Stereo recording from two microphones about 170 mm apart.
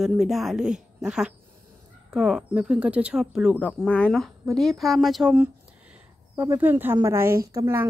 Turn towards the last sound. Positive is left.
turn(degrees=-15)  # may be behind; listen again after turning